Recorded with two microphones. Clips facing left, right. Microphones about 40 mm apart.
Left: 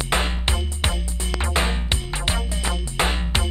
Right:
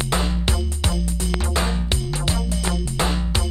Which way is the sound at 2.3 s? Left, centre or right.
Left.